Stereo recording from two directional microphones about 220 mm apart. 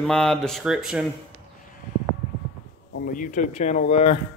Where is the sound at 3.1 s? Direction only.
35° left (ahead or behind).